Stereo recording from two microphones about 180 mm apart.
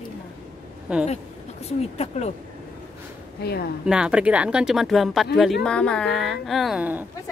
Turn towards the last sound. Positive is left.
turn(degrees=-10)  # may be behind; listen again after turning